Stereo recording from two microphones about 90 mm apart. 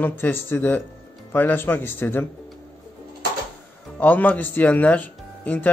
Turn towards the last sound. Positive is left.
turn(degrees=20)  # may be behind; listen again after turning